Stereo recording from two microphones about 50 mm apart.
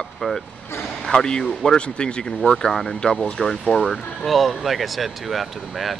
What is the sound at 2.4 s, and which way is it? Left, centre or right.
Speech, centre.